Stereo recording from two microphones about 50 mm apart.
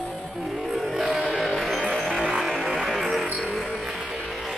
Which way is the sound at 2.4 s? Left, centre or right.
Centre.